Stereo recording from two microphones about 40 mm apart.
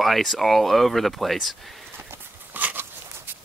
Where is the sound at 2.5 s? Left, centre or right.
Right.